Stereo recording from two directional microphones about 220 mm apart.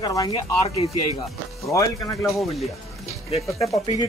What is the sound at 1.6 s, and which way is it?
Speech, 15° left (ahead or behind).